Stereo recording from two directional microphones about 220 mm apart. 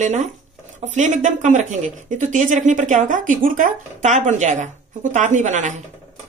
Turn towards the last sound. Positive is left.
turn(degrees=-35)  # may be behind; listen again after turning